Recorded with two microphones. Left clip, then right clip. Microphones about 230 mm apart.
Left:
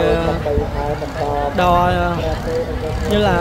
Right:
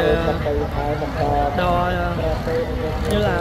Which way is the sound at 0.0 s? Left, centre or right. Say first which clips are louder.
Left 2 dB; centre.